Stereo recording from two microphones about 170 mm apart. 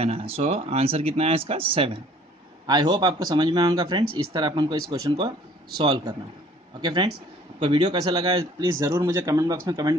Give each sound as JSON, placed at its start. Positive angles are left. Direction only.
{"t": 0.0, "sound": "speech", "side_deg": -35}